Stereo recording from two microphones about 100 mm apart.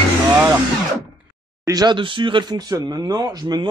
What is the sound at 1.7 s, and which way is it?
Speech, 45° right (ahead or behind).